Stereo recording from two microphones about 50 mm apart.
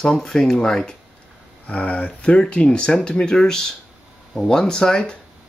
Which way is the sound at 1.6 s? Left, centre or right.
Left.